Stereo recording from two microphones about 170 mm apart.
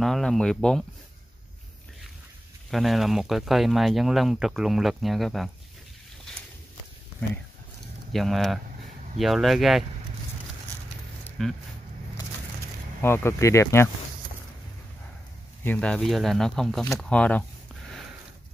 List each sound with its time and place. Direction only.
0.0 s speech: centre (ahead or behind)
2.7 s speech: centre (ahead or behind)
8.1 s speech: centre (ahead or behind)
11.2 s a sound: centre (ahead or behind)
13.0 s speech: 15° left (ahead or behind)
15.6 s speech: 5° left (ahead or behind)